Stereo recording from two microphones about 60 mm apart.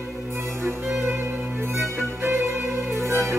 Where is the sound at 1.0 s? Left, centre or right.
Right.